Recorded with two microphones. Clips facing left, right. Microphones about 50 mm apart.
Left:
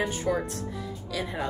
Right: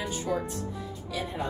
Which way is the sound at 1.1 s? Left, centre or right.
Left.